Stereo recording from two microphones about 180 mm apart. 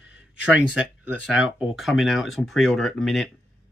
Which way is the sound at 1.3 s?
Centre (ahead or behind).